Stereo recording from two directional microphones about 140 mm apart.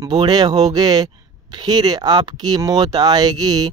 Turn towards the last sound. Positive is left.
turn(degrees=-30)  # may be behind; listen again after turning